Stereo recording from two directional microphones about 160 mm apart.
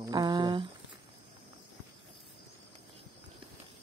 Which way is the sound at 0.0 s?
25° right (ahead or behind).